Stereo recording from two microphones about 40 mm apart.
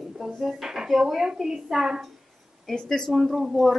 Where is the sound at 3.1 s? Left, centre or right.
Centre.